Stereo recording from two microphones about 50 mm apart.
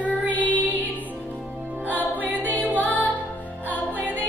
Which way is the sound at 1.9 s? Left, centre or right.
Right.